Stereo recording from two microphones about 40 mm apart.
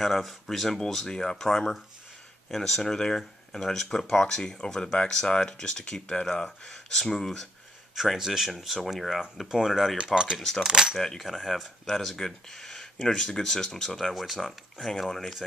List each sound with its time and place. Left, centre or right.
0.0 s speech: centre
7.9 s speech: centre
10.6 s cutlery: centre
11.0 s speech: centre